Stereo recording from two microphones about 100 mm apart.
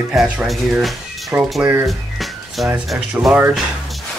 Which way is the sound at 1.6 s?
25° right (ahead or behind).